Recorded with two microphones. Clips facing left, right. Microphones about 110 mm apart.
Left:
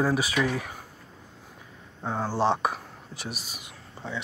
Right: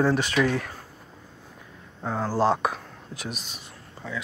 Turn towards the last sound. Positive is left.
turn(degrees=25)  # may be behind; listen again after turning